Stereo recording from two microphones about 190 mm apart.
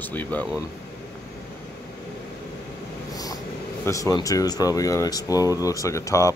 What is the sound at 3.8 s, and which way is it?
Speech, 15° left (ahead or behind).